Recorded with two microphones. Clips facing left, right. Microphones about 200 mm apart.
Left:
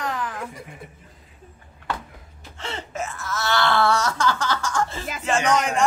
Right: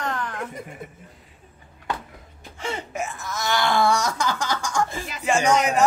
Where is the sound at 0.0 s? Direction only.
Centre (ahead or behind).